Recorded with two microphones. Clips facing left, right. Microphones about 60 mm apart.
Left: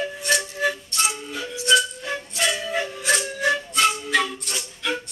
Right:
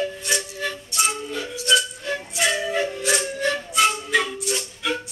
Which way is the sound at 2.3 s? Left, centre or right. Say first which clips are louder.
Right 2 dB; centre.